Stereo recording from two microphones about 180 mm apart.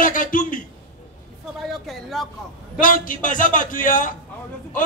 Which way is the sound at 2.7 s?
50° left (ahead or behind).